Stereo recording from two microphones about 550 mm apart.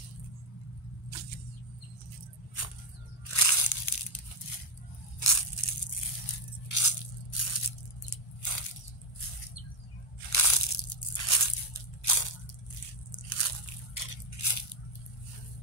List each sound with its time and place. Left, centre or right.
3.3 s tearing: left
6.7 s crunch: left
8.1 s biting: left
10.3 s crunch: left
13.1 s biting: left